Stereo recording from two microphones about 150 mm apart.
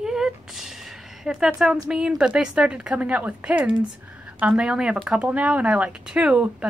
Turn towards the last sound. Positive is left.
turn(degrees=-5)  # may be behind; listen again after turning